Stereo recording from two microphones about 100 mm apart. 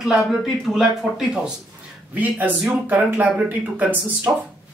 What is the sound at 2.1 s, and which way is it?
Speech, 15° right (ahead or behind).